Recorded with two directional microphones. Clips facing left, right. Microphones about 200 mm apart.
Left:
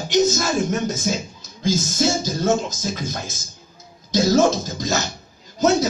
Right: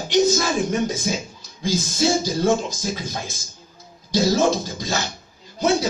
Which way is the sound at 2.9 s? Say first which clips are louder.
Left 1 dB; 45° left (ahead or behind).